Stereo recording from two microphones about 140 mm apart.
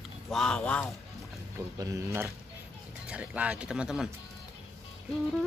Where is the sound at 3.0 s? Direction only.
10° right (ahead or behind).